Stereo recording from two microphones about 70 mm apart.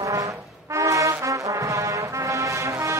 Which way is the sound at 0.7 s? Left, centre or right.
Right.